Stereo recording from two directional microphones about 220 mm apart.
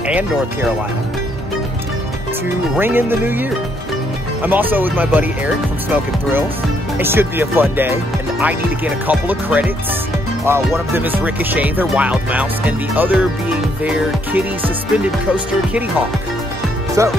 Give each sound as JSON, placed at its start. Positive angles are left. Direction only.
{"t": 0.0, "sound": "speech", "side_deg": -5}
{"t": 2.7, "sound": "music", "side_deg": -10}
{"t": 17.0, "sound": "music", "side_deg": -15}